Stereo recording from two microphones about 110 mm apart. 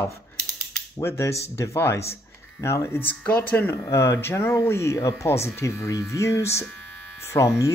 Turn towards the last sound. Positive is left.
turn(degrees=30)  # may be behind; listen again after turning